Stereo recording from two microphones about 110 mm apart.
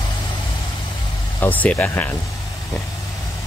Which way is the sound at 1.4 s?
15° left (ahead or behind).